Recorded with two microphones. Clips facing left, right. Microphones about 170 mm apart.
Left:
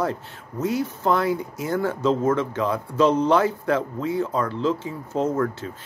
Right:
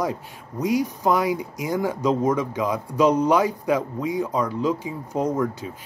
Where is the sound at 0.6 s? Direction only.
15° right (ahead or behind).